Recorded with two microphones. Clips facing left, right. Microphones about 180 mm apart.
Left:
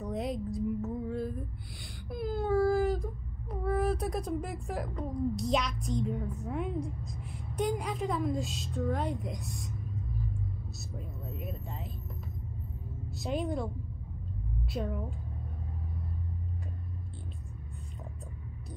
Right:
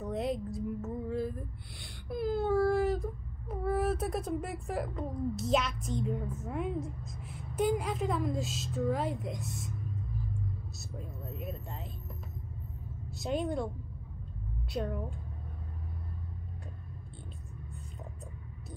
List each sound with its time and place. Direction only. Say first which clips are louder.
0.0 s music: right 1 dB; centre (ahead or behind)
2.0 s baby cry: right 1 dB; centre (ahead or behind)
7.1 s a woman's voice: left 2 dB; centre (ahead or behind)
11.0 s a woman's voice: even; centre (ahead or behind)
13.1 s a woman's voice: even; centre (ahead or behind)
14.7 s a woman's voice: right 1 dB; centre (ahead or behind)